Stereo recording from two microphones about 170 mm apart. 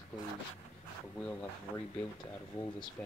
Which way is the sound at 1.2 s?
10° left (ahead or behind).